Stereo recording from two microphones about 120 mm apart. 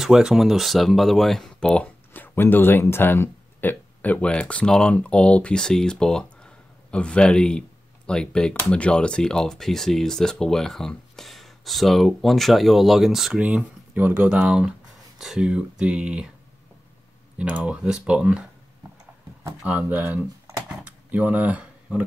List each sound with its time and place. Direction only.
0.0 s speech: 5° right (ahead or behind)
17.4 s speech: 10° right (ahead or behind)
19.6 s speech: 10° right (ahead or behind)
20.6 s a sound: 10° right (ahead or behind)